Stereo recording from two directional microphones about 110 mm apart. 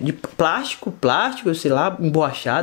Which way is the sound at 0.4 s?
10° left (ahead or behind).